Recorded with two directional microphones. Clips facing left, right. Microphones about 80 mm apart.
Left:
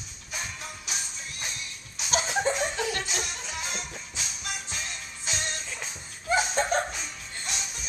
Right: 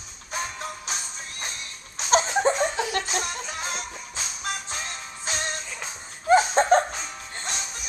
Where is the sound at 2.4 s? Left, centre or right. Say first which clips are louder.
Right 5 dB; right.